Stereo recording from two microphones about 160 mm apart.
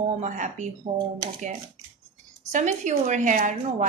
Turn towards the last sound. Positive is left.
turn(degrees=-55)  # may be behind; listen again after turning